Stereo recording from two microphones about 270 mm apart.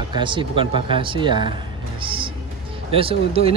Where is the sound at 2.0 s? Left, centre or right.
Centre.